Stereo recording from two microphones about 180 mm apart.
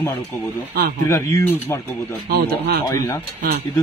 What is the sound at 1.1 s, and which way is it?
Speech, 15° left (ahead or behind).